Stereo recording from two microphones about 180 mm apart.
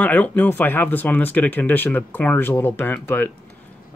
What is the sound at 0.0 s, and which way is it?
Speech, 10° left (ahead or behind).